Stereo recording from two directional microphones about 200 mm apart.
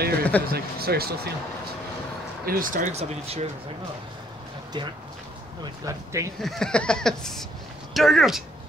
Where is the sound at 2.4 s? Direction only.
45° right (ahead or behind).